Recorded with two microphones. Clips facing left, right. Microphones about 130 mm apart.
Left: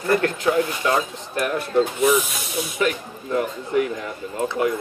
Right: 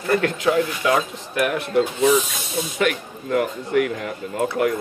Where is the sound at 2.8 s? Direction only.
65° right (ahead or behind).